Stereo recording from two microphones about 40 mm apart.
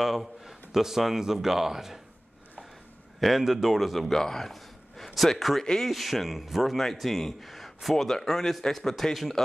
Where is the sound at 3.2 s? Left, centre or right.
Centre.